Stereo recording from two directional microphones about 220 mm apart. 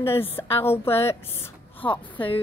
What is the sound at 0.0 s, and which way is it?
Speech, 10° left (ahead or behind).